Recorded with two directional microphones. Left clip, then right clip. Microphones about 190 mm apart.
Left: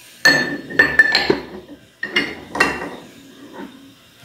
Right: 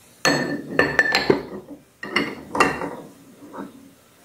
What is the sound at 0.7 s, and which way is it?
Chink, 25° right (ahead or behind).